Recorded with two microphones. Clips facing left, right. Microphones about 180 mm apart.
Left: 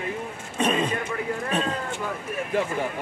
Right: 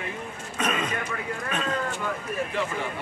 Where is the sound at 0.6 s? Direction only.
30° left (ahead or behind).